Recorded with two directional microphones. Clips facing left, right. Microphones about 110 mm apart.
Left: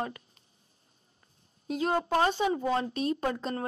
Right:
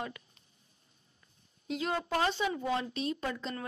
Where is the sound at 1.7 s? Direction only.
40° left (ahead or behind).